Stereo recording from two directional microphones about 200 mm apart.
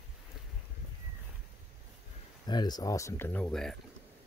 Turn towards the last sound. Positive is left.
turn(degrees=0)  # may be behind; listen again after turning